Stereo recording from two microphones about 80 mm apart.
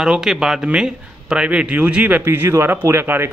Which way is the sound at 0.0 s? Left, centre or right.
Centre.